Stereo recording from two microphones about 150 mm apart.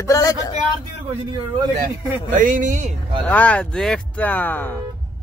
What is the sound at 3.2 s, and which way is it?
Speech, 10° left (ahead or behind).